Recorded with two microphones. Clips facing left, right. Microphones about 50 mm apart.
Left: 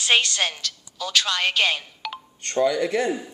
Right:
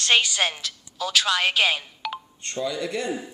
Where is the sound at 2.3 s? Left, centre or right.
Left.